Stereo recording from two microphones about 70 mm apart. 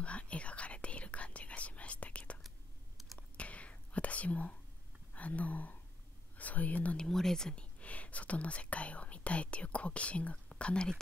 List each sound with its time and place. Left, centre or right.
0.0 s whispering: centre
5.1 s speech: left
7.1 s speech: centre